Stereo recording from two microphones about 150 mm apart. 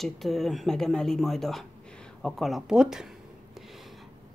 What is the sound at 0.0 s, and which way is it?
Speech, centre (ahead or behind).